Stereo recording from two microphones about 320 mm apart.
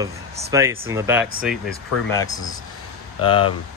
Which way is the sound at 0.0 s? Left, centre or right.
Centre.